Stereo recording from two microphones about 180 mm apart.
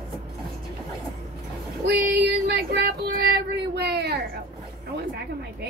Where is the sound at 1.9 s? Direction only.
60° right (ahead or behind).